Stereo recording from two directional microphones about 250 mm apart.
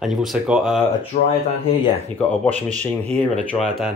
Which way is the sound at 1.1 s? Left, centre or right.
Left.